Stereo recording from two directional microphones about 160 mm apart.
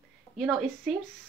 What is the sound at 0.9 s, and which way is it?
Speech, centre (ahead or behind).